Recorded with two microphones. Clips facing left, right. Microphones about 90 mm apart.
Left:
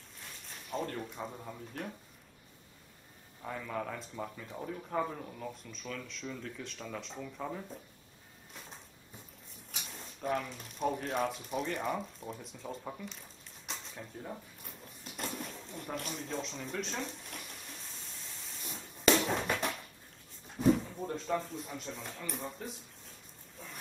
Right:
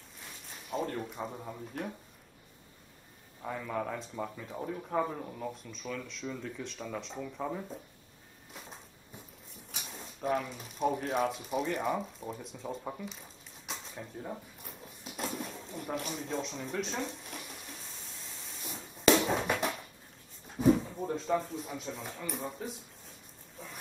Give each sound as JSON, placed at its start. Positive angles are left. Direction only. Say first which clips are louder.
{"t": 0.2, "sound": "speech", "louder": "right 1 dB", "side_deg": -5}
{"t": 3.4, "sound": "speech", "louder": "right 3 dB", "side_deg": -5}
{"t": 9.7, "sound": "speech", "louder": "right 2 dB", "side_deg": 0}
{"t": 12.8, "sound": "a sound", "louder": "right 3 dB", "side_deg": -5}
{"t": 20.4, "sound": "speech", "louder": "right 2 dB", "side_deg": -5}